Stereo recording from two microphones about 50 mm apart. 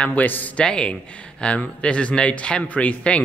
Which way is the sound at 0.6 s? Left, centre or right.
Centre.